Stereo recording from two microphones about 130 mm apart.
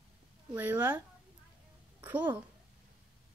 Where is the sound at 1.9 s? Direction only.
15° right (ahead or behind).